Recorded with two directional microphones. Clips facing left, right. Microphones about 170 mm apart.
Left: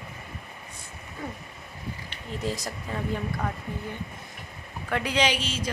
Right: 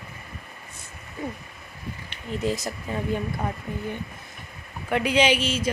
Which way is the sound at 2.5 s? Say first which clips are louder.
Right 4 dB; 25° right (ahead or behind).